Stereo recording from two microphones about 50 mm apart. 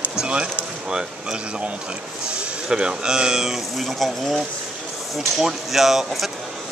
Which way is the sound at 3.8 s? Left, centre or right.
Centre.